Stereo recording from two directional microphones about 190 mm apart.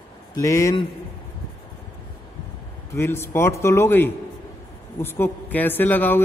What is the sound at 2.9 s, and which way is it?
A man's voice, 15° left (ahead or behind).